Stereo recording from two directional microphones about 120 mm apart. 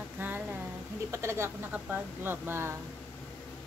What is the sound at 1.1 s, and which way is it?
A woman's voice, 20° right (ahead or behind).